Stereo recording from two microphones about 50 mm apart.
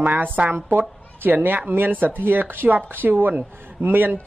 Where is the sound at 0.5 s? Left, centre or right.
Right.